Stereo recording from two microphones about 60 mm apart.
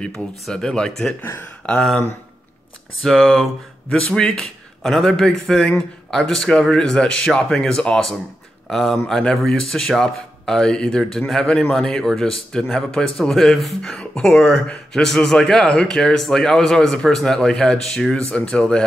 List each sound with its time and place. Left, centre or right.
0.0 s speech: centre
3.0 s speech: centre
4.8 s speech: centre
13.8 s speech: centre